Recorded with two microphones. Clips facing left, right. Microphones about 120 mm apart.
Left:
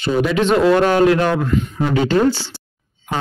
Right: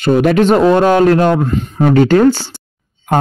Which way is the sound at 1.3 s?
35° right (ahead or behind).